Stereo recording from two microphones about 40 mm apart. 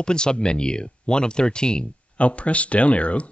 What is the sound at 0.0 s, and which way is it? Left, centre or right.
Speech, left.